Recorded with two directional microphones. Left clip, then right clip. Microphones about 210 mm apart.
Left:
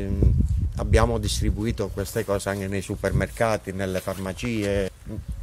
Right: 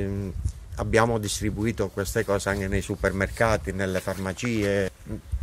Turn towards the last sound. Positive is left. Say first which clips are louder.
# even
turn(degrees=-10)  # may be behind; listen again after turning